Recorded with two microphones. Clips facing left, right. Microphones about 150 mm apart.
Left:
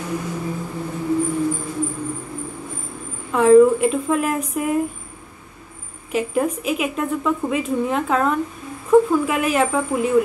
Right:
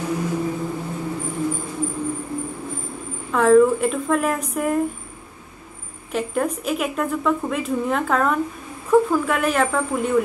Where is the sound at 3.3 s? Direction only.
Centre (ahead or behind).